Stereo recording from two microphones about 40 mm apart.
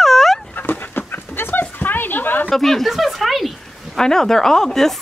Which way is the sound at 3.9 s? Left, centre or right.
Centre.